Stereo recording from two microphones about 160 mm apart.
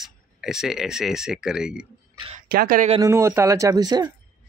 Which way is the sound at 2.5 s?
65° right (ahead or behind).